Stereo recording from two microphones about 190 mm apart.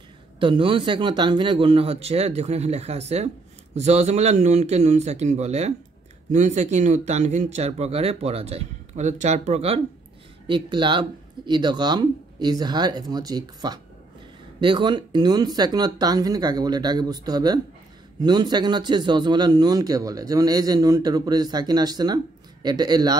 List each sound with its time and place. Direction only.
0.4 s a man's voice: 25° right (ahead or behind)